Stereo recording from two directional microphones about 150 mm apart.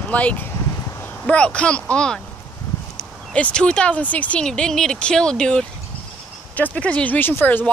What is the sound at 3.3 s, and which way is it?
A woman's voice, 5° left (ahead or behind).